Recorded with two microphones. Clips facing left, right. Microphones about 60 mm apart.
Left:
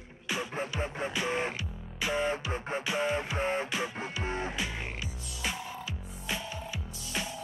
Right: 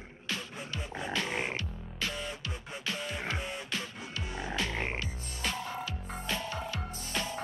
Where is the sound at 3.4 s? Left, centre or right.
Left.